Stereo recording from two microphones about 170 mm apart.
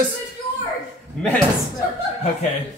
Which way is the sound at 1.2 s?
5° left (ahead or behind).